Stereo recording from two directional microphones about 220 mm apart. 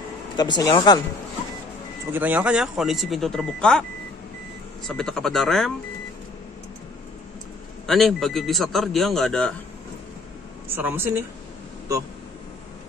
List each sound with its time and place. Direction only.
0.4 s speech: 20° left (ahead or behind)
2.1 s a man's voice: 10° right (ahead or behind)
4.8 s a man's voice: centre (ahead or behind)
7.8 s a man's voice: centre (ahead or behind)
10.7 s speech: 10° right (ahead or behind)